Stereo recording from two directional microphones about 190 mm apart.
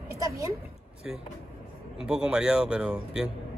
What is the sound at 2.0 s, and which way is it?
Speech, 5° right (ahead or behind).